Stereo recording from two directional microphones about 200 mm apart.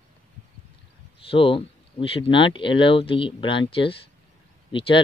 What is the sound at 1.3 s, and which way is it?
Speech, 25° left (ahead or behind).